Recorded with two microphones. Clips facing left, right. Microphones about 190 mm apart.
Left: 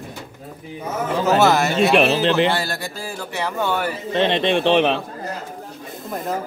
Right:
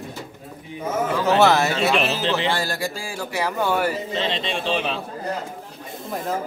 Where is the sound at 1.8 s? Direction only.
60° left (ahead or behind).